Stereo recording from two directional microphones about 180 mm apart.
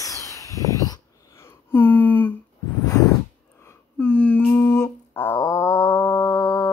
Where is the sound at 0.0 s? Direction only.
20° left (ahead or behind).